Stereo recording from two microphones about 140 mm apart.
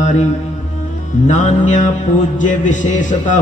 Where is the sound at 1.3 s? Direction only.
60° left (ahead or behind).